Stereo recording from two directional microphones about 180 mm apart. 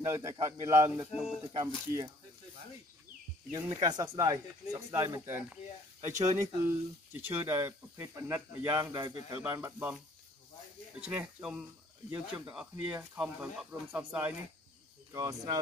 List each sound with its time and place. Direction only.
0.0 s speech: 15° right (ahead or behind)
1.4 s speech: 25° right (ahead or behind)
3.5 s speech: 20° right (ahead or behind)
15.1 s speech: 20° right (ahead or behind)